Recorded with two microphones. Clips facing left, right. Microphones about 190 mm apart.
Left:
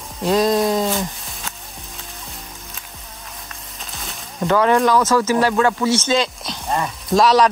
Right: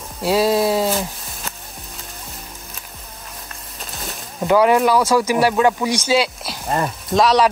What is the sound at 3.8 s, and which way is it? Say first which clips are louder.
Speech: right 3 dB; centre (ahead or behind).